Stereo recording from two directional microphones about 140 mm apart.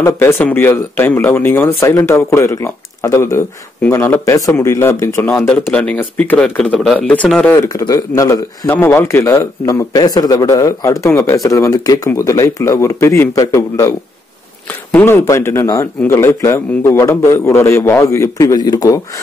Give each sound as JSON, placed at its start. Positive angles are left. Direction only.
{"t": 0.0, "sound": "speech", "side_deg": 20}
{"t": 7.6, "sound": "a man's voice", "side_deg": 25}